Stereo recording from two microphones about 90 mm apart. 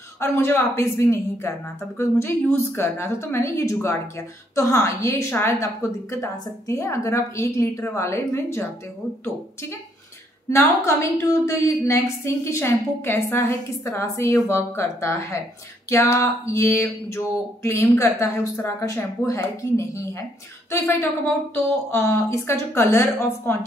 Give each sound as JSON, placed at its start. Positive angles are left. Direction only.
{"t": 0.2, "sound": "a woman's voice", "side_deg": 30}
{"t": 20.9, "sound": "speech", "side_deg": 20}